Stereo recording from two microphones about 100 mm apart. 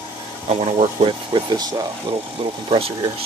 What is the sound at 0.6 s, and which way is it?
Speech, 65° right (ahead or behind).